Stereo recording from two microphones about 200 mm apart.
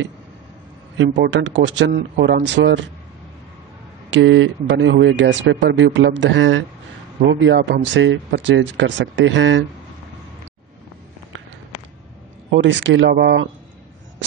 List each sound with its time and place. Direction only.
0.9 s speech: 65° right (ahead or behind)
4.1 s speech: 70° right (ahead or behind)
12.4 s speech: 65° right (ahead or behind)